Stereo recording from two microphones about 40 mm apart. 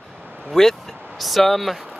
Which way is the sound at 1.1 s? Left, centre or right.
Centre.